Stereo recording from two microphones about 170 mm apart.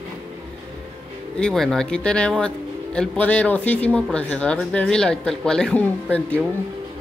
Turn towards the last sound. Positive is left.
turn(degrees=10)  # may be behind; listen again after turning